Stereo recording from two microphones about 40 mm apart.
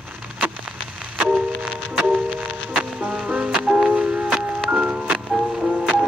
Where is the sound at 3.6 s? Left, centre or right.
Right.